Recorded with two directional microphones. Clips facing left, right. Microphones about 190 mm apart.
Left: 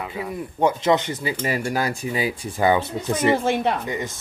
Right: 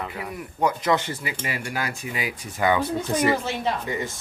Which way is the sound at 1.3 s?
40° left (ahead or behind).